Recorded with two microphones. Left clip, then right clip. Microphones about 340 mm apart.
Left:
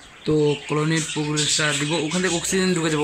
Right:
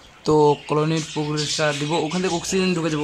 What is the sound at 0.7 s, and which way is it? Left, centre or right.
Speech, centre.